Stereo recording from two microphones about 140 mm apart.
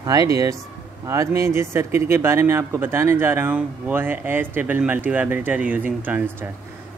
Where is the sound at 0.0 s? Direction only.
25° right (ahead or behind).